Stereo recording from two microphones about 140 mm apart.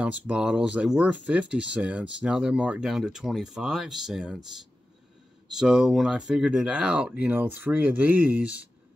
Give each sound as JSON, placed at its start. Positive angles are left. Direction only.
{"t": 0.0, "sound": "speech", "side_deg": -10}
{"t": 5.5, "sound": "speech", "side_deg": -5}